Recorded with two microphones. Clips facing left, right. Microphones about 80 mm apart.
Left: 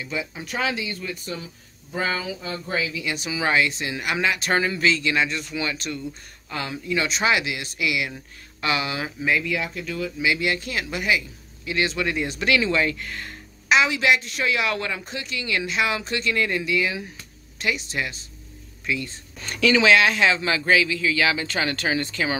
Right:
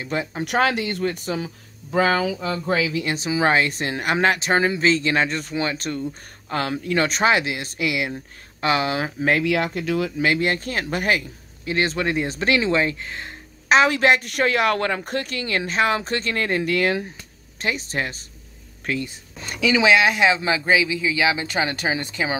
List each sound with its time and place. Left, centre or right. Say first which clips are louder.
0.1 s a woman's voice: right 6 dB; right
0.5 s speech: right 6 dB; right
3.0 s speech: right 5 dB; right
4.4 s speech: right 3 dB; right
6.5 s speech: right 4 dB; right
9.4 s speech: right 6 dB; right
10.1 s speech: right 3 dB; right
13.7 s a woman's voice: right 3 dB; right
17.6 s speech: right 1 dB; right
19.0 s speech: right 1 dB; centre